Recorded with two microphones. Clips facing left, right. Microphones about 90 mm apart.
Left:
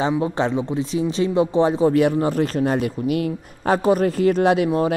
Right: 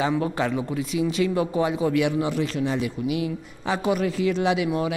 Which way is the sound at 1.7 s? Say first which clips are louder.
Left 5 dB; 35° left (ahead or behind).